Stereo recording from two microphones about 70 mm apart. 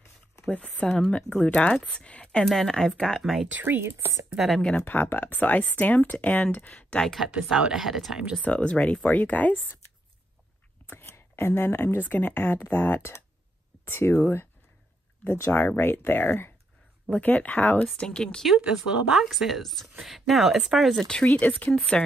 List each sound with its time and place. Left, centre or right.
0.5 s speech: centre
2.4 s speech: centre
3.5 s speech: right
4.3 s speech: centre
4.6 s speech: centre
4.8 s speech: left
7.4 s speech: centre
8.5 s speech: centre
10.9 s speech: left
17.1 s speech: left
18.6 s speech: centre
21.4 s speech: left